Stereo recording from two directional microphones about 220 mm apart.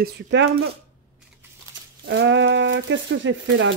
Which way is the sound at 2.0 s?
55° right (ahead or behind).